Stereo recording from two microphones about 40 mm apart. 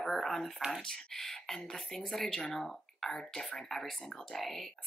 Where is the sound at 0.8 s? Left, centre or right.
Centre.